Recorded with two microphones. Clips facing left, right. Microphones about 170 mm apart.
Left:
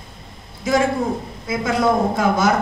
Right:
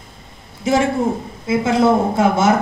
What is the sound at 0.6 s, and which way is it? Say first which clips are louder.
A man's voice: right 2 dB; 25° right (ahead or behind).